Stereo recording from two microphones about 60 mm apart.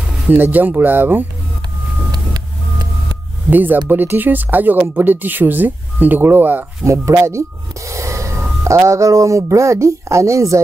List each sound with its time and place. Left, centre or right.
0.3 s speech: right
3.4 s speech: right
6.8 s speech: right